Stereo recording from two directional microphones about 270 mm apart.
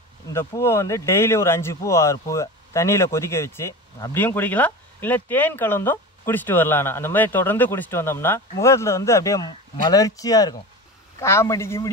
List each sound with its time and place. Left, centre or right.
0.3 s speech: centre